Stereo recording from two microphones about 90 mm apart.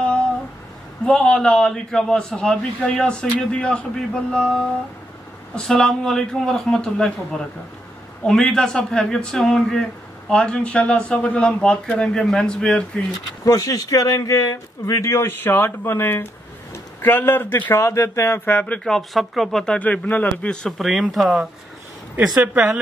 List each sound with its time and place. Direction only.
1.0 s a man's voice: 10° left (ahead or behind)
13.4 s speech: 45° left (ahead or behind); by 17.8 s 25° left (ahead or behind)
17.8 s speech: 35° left (ahead or behind)
18.9 s speech: centre (ahead or behind); by 20.5 s 20° left (ahead or behind)
20.6 s a man's voice: centre (ahead or behind)
22.2 s speech: 15° right (ahead or behind)